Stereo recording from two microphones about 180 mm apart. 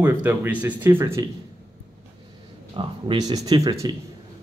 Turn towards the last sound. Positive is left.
turn(degrees=-20)  # may be behind; listen again after turning